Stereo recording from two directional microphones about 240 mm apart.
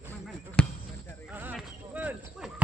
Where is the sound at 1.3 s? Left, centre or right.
Centre.